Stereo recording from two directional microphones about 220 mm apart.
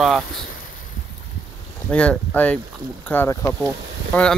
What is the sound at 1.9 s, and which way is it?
Speech, 5° left (ahead or behind).